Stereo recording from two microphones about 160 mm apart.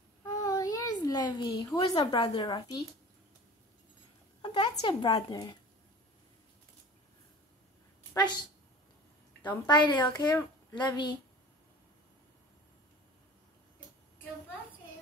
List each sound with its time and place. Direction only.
0.2 s a sound: 20° left (ahead or behind)
1.9 s a woman's voice: 25° left (ahead or behind)
4.4 s a sound: 30° left (ahead or behind)
4.8 s a woman's voice: 25° left (ahead or behind)
8.1 s a woman's voice: 25° left (ahead or behind)
9.5 s a woman's voice: 30° left (ahead or behind)